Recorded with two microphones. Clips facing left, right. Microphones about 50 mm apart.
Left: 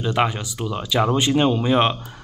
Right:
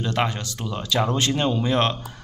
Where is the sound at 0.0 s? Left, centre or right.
Centre.